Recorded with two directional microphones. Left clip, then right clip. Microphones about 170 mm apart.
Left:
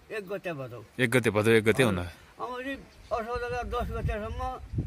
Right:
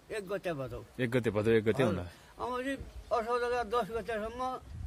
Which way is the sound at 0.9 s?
20° left (ahead or behind).